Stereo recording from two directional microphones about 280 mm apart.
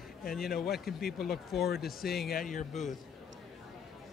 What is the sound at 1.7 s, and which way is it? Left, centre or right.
Speech, left.